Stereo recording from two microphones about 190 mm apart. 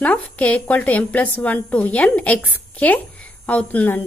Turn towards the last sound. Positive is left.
turn(degrees=10)  # may be behind; listen again after turning